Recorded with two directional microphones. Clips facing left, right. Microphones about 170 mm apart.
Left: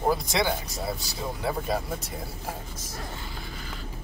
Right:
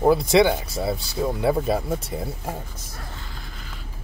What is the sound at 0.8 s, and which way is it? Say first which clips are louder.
Speech: right 7 dB; 30° right (ahead or behind).